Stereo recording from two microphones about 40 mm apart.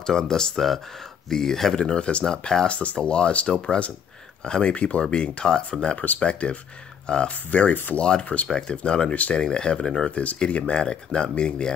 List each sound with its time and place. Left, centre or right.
0.0 s speech: centre
1.8 s speech: left
2.2 s speech: centre
2.7 s speech: left
7.7 s speech: left
8.0 s speech: left
10.1 s speech: left
10.7 s speech: left